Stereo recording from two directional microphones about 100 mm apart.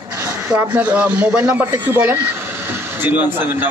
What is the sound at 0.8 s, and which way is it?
A man's voice, 15° right (ahead or behind).